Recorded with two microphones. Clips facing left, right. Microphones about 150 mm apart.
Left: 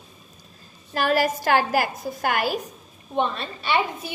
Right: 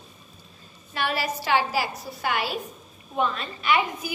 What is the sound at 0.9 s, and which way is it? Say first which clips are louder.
A woman's voice: left 6 dB; 45° left (ahead or behind).